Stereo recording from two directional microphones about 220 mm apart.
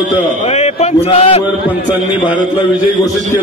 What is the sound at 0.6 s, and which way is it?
Chant, 30° left (ahead or behind).